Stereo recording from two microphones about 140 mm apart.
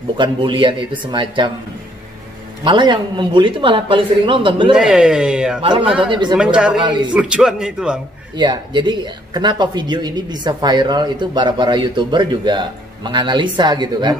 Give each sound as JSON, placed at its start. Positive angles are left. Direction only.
{"t": 0.2, "sound": "speech", "side_deg": -35}
{"t": 2.6, "sound": "speech", "side_deg": -35}
{"t": 4.7, "sound": "speech", "side_deg": -5}
{"t": 5.6, "sound": "speech", "side_deg": -35}
{"t": 6.3, "sound": "speech", "side_deg": -5}
{"t": 6.8, "sound": "speech", "side_deg": -35}
{"t": 7.2, "sound": "speech", "side_deg": -5}
{"t": 8.4, "sound": "speech", "side_deg": -35}